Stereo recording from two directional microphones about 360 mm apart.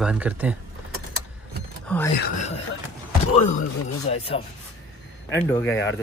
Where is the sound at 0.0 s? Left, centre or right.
Centre.